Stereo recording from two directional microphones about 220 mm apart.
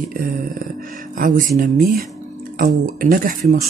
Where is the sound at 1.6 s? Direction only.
40° right (ahead or behind).